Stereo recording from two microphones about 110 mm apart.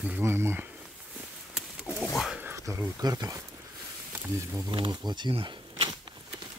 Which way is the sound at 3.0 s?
35° right (ahead or behind).